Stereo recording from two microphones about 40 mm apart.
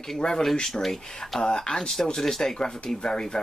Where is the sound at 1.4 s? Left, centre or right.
Centre.